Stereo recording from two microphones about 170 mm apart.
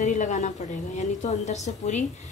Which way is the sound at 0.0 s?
45° left (ahead or behind).